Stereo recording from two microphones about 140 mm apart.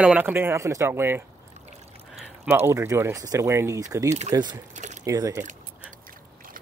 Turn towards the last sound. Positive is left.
turn(degrees=-25)  # may be behind; listen again after turning